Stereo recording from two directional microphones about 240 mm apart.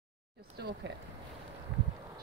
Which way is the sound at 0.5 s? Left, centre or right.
Right.